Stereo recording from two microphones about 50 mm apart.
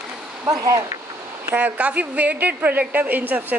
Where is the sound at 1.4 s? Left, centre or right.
Right.